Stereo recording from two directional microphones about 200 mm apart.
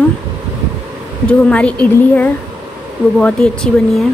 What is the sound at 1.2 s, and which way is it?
A woman's voice, 5° left (ahead or behind).